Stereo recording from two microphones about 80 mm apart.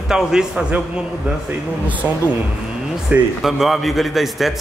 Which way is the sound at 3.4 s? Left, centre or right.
Centre.